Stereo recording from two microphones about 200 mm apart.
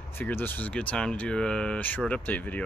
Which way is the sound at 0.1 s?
10° left (ahead or behind).